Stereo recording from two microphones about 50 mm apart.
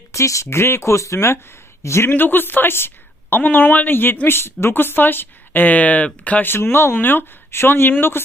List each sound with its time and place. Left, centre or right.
0.1 s speech: left
2.0 s a woman's voice: left
3.4 s speech: left
6.4 s speech: left